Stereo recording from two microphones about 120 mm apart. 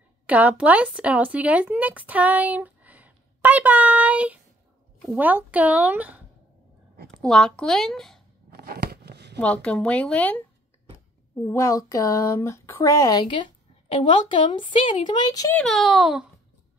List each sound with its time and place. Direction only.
0.3 s speech: 10° right (ahead or behind)
7.2 s speech: 5° left (ahead or behind)
9.4 s speech: 10° left (ahead or behind)
11.4 s speech: 25° left (ahead or behind)
13.2 s speech: 40° left (ahead or behind)
13.8 s a woman's voice: 85° left
14.4 s speech: 45° left (ahead or behind)
15.5 s speech: 5° left (ahead or behind)